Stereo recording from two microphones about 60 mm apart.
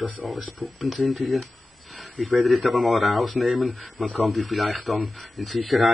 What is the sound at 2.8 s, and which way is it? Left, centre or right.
Speech, centre.